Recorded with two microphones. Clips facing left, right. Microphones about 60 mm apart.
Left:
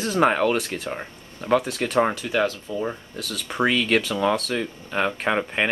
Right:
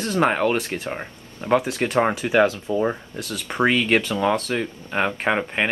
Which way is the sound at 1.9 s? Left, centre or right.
Centre.